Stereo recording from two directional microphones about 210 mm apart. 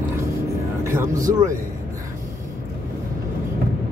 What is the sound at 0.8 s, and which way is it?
Speech, 15° right (ahead or behind).